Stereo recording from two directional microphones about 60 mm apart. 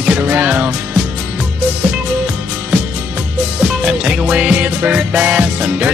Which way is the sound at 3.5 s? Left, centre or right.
Centre.